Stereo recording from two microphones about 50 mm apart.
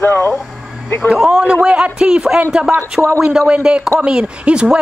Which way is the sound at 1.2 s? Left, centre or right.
Centre.